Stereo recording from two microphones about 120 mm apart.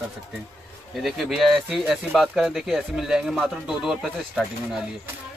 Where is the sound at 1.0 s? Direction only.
Centre (ahead or behind).